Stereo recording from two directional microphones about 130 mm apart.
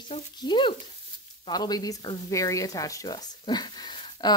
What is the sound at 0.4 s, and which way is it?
Speech, 35° left (ahead or behind).